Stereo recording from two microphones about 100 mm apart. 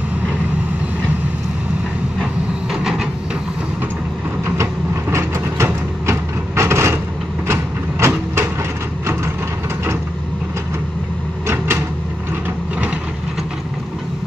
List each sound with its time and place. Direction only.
2.7 s train: 5° right (ahead or behind)
5.1 s vehicle: 30° right (ahead or behind)
11.4 s a sound: 25° right (ahead or behind)